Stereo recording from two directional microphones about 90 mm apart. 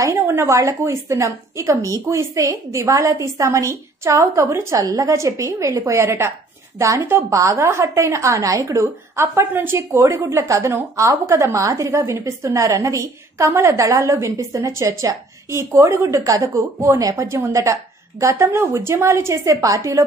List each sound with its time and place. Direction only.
0.0 s a woman's voice: 30° right (ahead or behind)